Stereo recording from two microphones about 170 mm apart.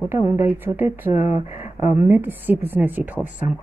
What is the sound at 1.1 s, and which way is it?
Speech, 40° left (ahead or behind).